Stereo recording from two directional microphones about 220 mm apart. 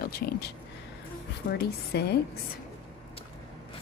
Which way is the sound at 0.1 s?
45° left (ahead or behind).